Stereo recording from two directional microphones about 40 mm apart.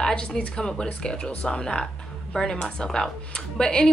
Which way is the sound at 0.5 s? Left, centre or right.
Left.